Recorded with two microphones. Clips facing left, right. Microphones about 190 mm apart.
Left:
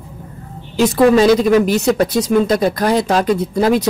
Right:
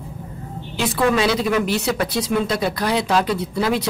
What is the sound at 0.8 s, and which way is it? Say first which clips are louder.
Speech: left 8 dB; 40° left (ahead or behind).